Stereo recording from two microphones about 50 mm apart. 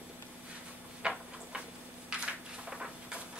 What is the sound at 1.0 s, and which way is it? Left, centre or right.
Tick-tock, right.